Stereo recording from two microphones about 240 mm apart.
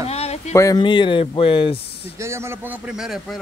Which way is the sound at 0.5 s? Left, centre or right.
Centre.